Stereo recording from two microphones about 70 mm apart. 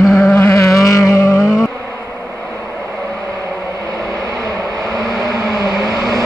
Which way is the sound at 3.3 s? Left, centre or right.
Right.